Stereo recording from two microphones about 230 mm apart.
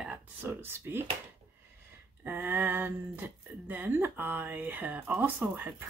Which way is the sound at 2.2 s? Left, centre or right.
Centre.